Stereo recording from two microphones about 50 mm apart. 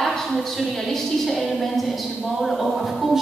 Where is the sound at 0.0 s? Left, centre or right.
Centre.